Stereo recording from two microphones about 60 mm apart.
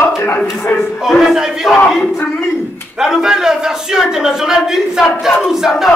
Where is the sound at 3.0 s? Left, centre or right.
Centre.